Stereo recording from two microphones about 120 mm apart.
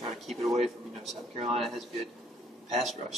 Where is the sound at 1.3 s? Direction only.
55° right (ahead or behind).